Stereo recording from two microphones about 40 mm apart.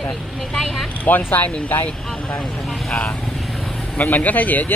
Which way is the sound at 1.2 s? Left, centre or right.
Left.